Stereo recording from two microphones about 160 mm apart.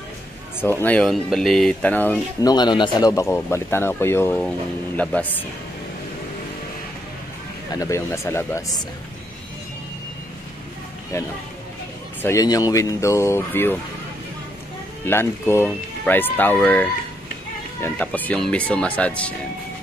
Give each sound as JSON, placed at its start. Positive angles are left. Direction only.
{"t": 0.6, "sound": "a man's voice", "side_deg": 15}
{"t": 2.4, "sound": "a man's voice", "side_deg": 25}
{"t": 7.7, "sound": "a man's voice", "side_deg": 20}
{"t": 11.1, "sound": "a man's voice", "side_deg": 20}
{"t": 15.0, "sound": "a man's voice", "side_deg": 15}